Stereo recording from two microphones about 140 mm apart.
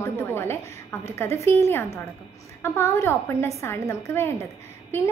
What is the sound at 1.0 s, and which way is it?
A woman's voice, 20° left (ahead or behind).